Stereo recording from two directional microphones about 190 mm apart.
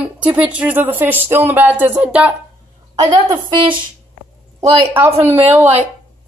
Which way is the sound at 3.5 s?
25° right (ahead or behind).